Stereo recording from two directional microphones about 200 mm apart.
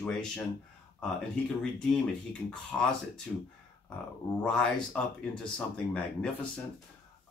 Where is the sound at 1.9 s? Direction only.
5° left (ahead or behind).